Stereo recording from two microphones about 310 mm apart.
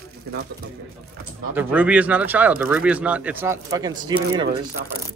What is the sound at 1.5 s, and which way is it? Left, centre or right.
Speech, centre.